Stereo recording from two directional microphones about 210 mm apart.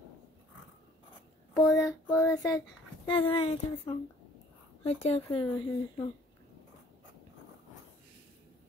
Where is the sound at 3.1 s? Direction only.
25° left (ahead or behind).